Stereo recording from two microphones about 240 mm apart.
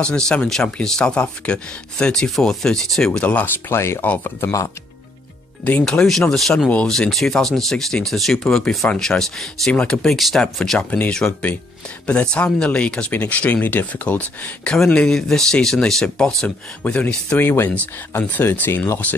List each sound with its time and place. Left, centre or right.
0.0 s speech: centre
5.7 s speech: centre